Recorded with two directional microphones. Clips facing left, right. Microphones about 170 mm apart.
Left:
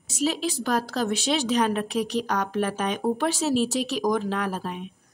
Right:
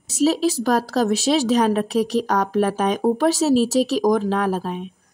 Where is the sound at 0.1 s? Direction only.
40° right (ahead or behind).